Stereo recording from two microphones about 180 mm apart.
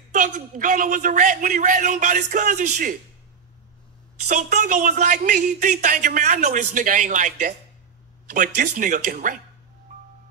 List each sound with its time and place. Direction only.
0.1 s speech: 45° right (ahead or behind)
4.3 s speech: 40° right (ahead or behind)